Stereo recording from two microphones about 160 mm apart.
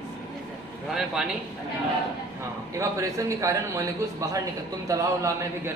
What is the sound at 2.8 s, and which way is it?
A man's voice, 20° right (ahead or behind).